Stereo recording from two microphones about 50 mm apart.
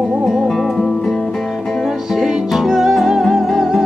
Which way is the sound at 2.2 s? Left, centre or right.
Centre.